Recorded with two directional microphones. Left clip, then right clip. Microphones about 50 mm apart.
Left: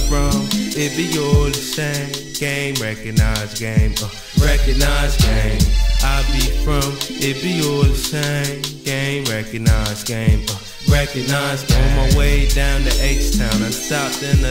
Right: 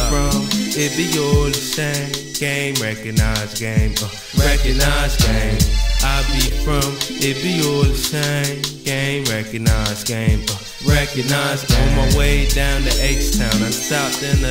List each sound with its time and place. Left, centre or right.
0.1 s music: right
2.4 s music: centre
2.7 s music: right
8.9 s music: centre
9.2 s music: right
12.2 s music: centre
12.8 s music: right